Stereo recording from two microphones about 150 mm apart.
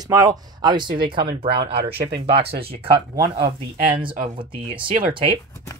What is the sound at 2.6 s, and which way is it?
Speech, 40° right (ahead or behind).